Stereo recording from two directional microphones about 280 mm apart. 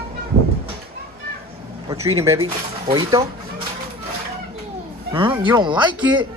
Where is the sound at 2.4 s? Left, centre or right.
Centre.